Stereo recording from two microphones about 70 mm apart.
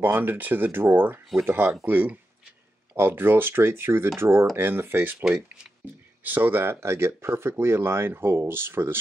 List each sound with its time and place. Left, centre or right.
0.0 s speech: right
6.2 s speech: right